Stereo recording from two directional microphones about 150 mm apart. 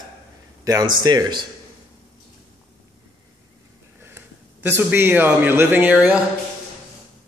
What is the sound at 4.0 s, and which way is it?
A man's voice, 15° right (ahead or behind).